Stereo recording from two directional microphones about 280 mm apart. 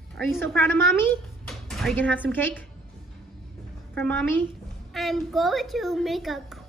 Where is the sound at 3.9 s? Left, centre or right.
Centre.